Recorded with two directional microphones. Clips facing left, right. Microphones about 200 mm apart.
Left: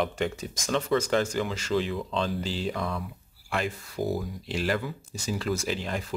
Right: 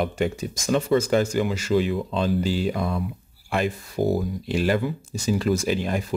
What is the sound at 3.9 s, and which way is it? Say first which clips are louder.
Speech: right 6 dB; 30° right (ahead or behind).